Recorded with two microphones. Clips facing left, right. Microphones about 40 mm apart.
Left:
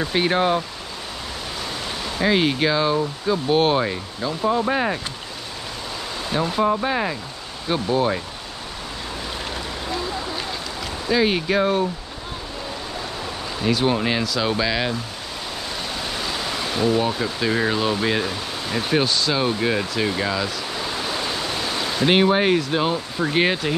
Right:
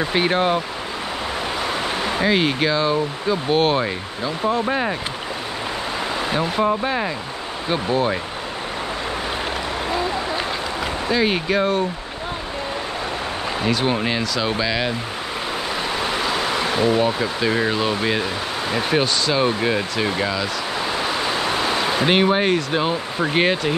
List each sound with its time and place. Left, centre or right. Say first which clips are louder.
0.0 s speech: right 1 dB; centre
2.2 s speech: left 1 dB; centre
6.3 s speech: left 1 dB; centre
6.7 s speech: even; centre
9.8 s a sound: right 4 dB; right
11.1 s speech: left 1 dB; centre
13.7 s speech: left 2 dB; centre
16.0 s pink noise: right 5 dB; right
17.0 s speech: right 3 dB; centre
21.0 s ocean: right 4 dB; centre
22.0 s speech: left 2 dB; centre
23.1 s speech: right 2 dB; centre
23.4 s speech: right 2 dB; centre